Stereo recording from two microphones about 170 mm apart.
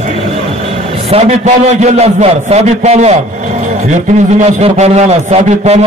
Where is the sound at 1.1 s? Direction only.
40° right (ahead or behind).